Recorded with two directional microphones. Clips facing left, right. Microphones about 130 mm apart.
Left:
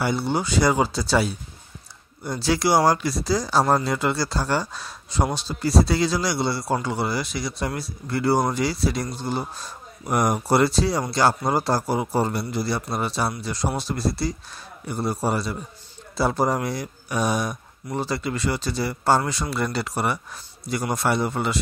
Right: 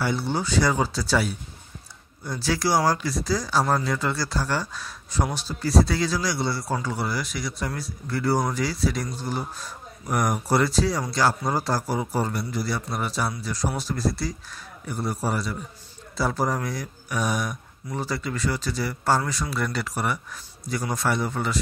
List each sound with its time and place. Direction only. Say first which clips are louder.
0.0 s speech: left 2 dB; 20° left (ahead or behind)